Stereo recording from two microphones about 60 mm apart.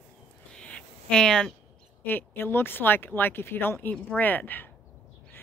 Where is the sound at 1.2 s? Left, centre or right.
Centre.